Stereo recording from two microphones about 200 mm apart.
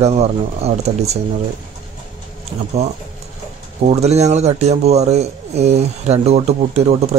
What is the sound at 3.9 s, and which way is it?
Speech, 35° right (ahead or behind).